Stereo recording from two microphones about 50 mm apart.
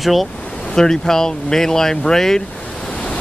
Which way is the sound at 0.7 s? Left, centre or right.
Centre.